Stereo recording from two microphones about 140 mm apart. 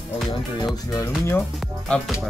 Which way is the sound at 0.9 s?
20° left (ahead or behind).